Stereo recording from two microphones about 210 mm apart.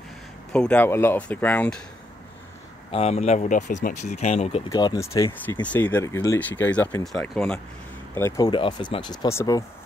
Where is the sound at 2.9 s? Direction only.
30° left (ahead or behind).